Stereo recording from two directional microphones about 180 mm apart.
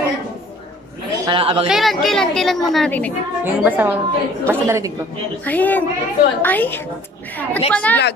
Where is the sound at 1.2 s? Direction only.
30° right (ahead or behind).